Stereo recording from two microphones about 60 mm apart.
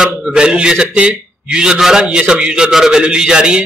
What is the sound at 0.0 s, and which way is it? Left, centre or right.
A man's voice, centre.